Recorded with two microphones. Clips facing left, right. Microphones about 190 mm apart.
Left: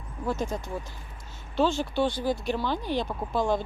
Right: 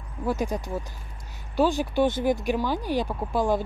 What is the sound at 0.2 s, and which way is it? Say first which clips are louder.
Speech: right 3 dB; 15° right (ahead or behind).